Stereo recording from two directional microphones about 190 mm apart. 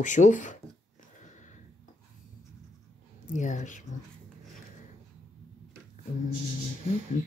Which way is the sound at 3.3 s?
40° left (ahead or behind).